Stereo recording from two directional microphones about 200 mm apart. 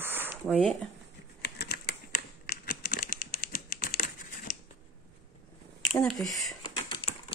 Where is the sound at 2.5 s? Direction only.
45° left (ahead or behind).